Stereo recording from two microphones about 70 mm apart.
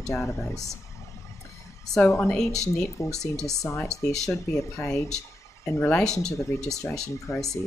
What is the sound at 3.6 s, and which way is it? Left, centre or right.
Speech, left.